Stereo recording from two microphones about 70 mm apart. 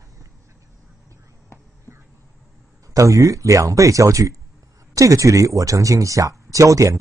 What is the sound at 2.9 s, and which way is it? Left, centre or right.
Speech, right.